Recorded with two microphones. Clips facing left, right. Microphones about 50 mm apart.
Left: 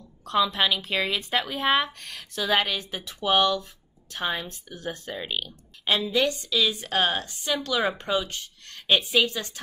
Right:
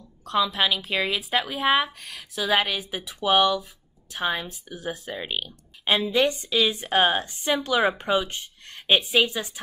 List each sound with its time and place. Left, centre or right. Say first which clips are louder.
0.0 s a woman's voice: even; centre
5.9 s a woman's voice: right 2 dB; right